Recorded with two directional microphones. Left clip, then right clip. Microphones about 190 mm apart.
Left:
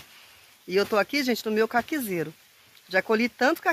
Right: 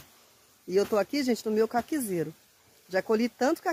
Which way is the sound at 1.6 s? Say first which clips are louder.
Left 3 dB; 20° left (ahead or behind).